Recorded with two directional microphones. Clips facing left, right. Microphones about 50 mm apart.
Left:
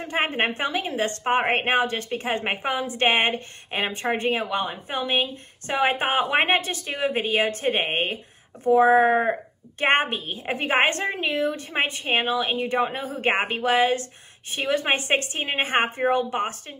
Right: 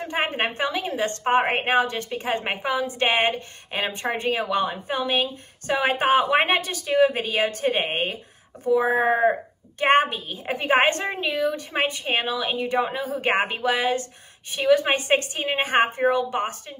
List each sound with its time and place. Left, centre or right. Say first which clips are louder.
0.0 s a woman's voice: left 1 dB; left
8.9 s speech: left 1 dB; centre
9.8 s a woman's voice: right 2 dB; left